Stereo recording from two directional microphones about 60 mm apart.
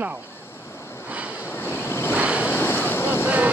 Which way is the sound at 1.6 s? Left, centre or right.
Left.